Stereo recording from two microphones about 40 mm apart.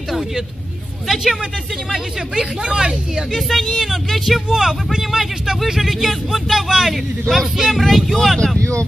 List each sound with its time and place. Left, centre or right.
1.1 s speech: centre
3.3 s speech: centre
4.5 s speech: centre